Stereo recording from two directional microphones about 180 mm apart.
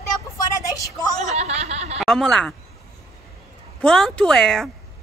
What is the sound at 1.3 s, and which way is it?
Snicker, 35° right (ahead or behind).